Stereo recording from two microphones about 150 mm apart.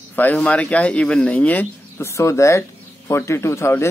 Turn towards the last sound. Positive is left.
turn(degrees=15)  # may be behind; listen again after turning